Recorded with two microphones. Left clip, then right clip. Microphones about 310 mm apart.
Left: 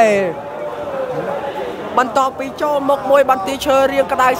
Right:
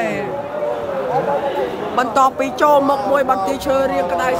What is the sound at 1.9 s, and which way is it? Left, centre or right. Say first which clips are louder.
Speech: even; centre.